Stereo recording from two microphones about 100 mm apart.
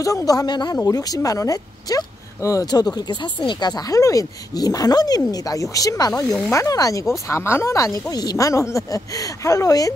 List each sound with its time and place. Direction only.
0.0 s speech: 35° left (ahead or behind)
0.7 s speech: 35° left (ahead or behind)
6.2 s speech: 5° left (ahead or behind)
6.5 s speech: 30° left (ahead or behind)